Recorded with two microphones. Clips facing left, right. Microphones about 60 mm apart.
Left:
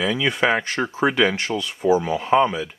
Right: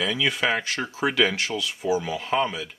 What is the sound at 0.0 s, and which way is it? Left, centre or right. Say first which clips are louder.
Speech: left 4 dB; centre.